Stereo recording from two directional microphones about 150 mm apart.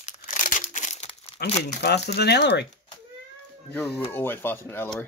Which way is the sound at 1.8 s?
90° left.